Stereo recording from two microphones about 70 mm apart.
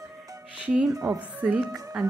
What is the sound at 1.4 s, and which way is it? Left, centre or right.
Speech, centre.